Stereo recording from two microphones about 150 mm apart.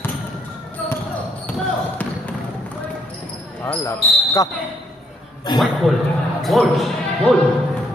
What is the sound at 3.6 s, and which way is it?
Speech, 15° left (ahead or behind).